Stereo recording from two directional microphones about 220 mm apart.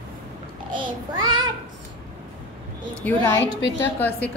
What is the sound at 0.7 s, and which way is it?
Child singing, 20° right (ahead or behind).